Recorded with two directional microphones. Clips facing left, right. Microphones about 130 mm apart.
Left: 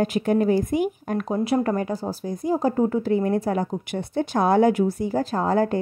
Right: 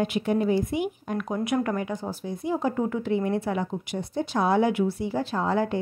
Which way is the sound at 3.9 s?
55° left (ahead or behind).